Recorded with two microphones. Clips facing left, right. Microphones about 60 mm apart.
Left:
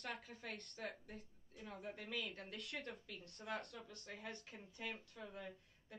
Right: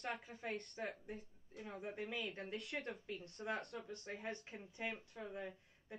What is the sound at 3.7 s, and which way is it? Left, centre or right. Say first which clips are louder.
Speech: right 6 dB; right.